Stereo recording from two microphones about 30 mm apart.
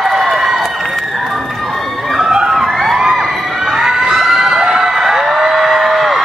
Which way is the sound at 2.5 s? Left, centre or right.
Centre.